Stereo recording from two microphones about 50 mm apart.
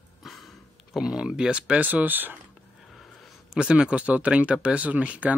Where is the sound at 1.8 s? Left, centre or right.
Right.